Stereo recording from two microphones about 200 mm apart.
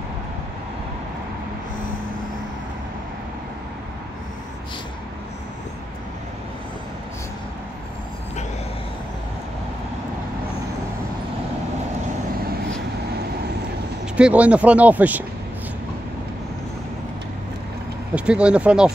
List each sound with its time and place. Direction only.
14.1 s speech: 5° right (ahead or behind)
18.1 s speech: 5° right (ahead or behind)